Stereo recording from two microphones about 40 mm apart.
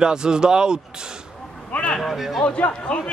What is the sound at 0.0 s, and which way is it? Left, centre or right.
Speech, centre.